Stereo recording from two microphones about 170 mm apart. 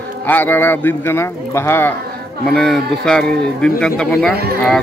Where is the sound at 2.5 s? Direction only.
Centre (ahead or behind).